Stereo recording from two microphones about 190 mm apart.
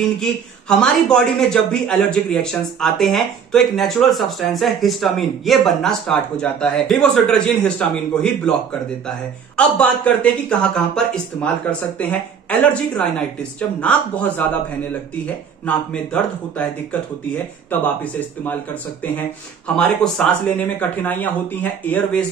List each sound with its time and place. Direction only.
0.2 s speech: 5° left (ahead or behind)
9.6 s speech: 5° left (ahead or behind)
15.6 s speech: 5° left (ahead or behind)
17.6 s speech: 10° left (ahead or behind)